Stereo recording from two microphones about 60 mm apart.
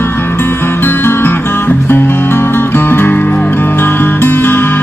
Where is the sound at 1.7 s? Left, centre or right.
Left.